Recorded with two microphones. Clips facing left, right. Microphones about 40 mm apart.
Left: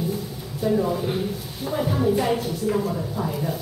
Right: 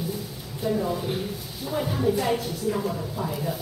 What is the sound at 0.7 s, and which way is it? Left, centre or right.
A woman's voice, centre.